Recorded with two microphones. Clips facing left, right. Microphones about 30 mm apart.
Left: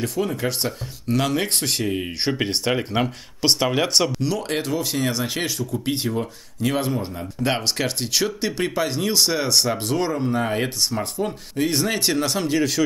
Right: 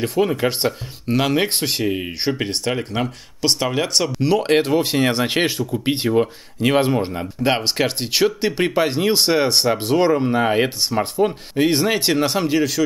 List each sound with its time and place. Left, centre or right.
0.0 s speech: right; by 2.1 s centre
2.2 s speech: centre
4.2 s speech: right
7.4 s speech: centre